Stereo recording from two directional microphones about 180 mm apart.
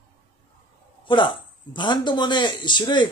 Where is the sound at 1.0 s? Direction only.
25° left (ahead or behind).